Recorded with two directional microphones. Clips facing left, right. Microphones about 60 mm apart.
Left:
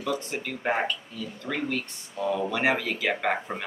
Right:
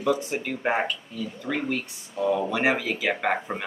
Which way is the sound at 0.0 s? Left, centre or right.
Centre.